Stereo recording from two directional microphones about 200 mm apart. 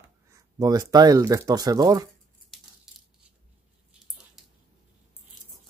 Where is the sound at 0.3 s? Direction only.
20° right (ahead or behind).